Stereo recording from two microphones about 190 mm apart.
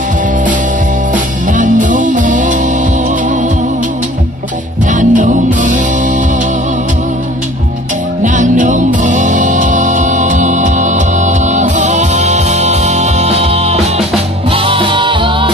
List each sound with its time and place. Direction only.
1.1 s music: 45° right (ahead or behind)
4.9 s music: 40° right (ahead or behind)
8.2 s music: 40° right (ahead or behind); by 15.5 s 25° right (ahead or behind)